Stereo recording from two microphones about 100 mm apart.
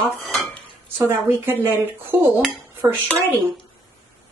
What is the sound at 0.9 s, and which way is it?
Speech, 20° right (ahead or behind).